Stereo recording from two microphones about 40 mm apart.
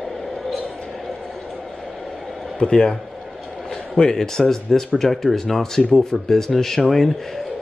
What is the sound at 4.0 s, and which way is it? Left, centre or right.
Speech, centre.